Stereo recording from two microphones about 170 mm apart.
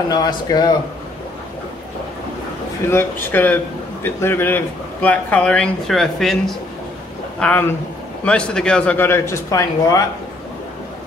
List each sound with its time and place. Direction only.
0.1 s a man's voice: 25° left (ahead or behind)
2.9 s a man's voice: 15° left (ahead or behind)